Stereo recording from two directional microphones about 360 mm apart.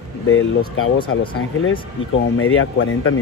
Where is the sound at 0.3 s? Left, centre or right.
Left.